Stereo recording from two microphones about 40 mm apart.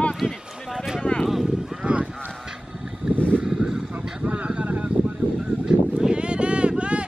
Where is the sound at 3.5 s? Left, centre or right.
Centre.